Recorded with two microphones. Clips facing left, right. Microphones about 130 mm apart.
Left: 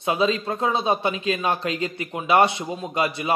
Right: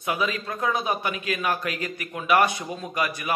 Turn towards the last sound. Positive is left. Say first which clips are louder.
# left 4 dB
turn(degrees=25)  # may be behind; listen again after turning